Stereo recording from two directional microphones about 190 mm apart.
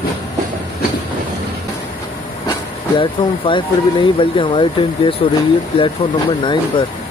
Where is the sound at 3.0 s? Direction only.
25° left (ahead or behind).